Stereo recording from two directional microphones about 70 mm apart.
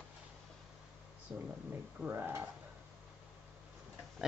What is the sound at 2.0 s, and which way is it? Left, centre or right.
Speech, right.